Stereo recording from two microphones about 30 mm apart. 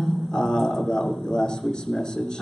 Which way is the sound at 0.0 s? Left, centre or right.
Left.